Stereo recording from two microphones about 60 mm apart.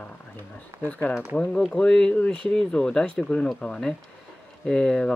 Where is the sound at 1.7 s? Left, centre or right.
Centre.